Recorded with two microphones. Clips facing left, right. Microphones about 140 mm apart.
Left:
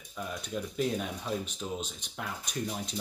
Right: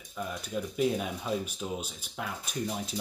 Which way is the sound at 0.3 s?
5° right (ahead or behind).